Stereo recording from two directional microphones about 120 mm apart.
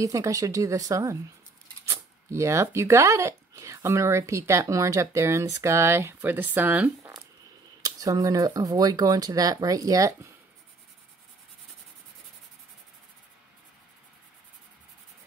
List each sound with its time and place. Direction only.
0.0 s speech: 25° right (ahead or behind)
7.0 s a sound: 25° right (ahead or behind)
7.8 s speech: 30° right (ahead or behind)